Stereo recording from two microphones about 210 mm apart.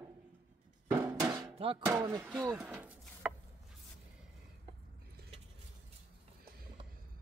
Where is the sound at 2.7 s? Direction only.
5° right (ahead or behind).